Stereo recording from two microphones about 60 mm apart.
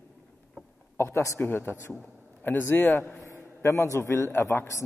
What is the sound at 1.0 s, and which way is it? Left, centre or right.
Speech, left.